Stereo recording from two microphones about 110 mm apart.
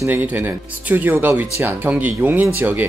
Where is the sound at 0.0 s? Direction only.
15° right (ahead or behind).